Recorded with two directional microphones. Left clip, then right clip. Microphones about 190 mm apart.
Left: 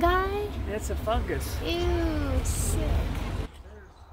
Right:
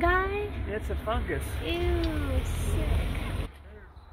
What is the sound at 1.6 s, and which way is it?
Speech, 10° left (ahead or behind).